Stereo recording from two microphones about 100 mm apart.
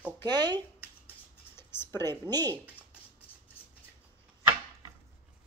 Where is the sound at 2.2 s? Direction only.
45° right (ahead or behind).